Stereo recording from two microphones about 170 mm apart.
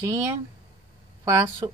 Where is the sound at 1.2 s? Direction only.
20° right (ahead or behind).